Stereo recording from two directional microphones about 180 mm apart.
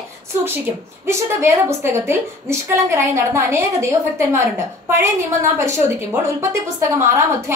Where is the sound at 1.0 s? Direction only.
15° right (ahead or behind).